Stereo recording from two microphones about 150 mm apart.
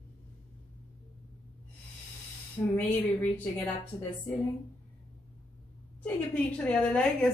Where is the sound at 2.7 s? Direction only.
10° left (ahead or behind).